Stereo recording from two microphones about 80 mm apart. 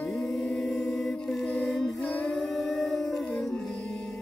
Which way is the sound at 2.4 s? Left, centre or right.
Centre.